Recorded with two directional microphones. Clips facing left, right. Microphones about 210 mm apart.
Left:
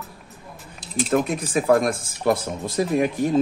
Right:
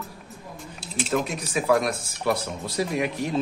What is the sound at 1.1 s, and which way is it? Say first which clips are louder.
Speech: left 5 dB; 50° left (ahead or behind).